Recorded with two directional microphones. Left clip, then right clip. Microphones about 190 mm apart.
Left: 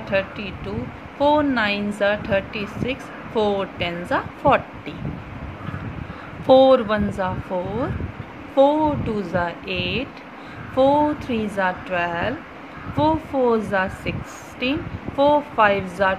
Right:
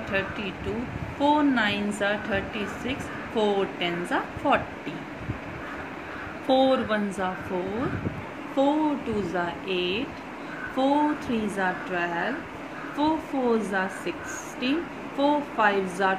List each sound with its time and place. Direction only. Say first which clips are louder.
0.1 s speech: left 6 dB; 30° left (ahead or behind)
6.4 s speech: left 9 dB; 40° left (ahead or behind)
7.5 s speech: left 4 dB; 30° left (ahead or behind)